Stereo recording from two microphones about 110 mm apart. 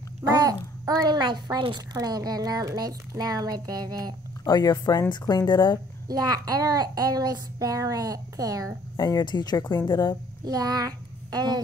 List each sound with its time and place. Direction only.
0.4 s a child's voice: 35° right (ahead or behind)
4.5 s speech: 35° left (ahead or behind)
5.5 s speech: 40° left (ahead or behind)
6.0 s a child's voice: 35° right (ahead or behind)
8.9 s speech: 35° left (ahead or behind)
10.4 s a child's voice: 35° right (ahead or behind)